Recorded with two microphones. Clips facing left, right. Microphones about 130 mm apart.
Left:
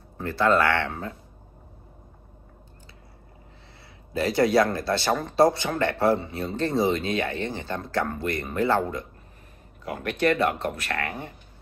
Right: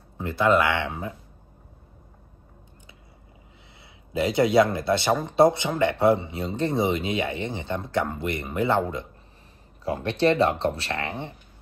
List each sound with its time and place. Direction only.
0.2 s speech: 20° right (ahead or behind)
4.1 s speech: 20° right (ahead or behind)